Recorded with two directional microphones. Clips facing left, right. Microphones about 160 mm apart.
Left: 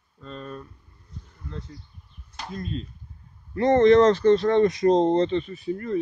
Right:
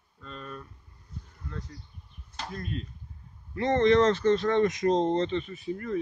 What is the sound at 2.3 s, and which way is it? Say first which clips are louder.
Speech: left 3 dB; 25° left (ahead or behind).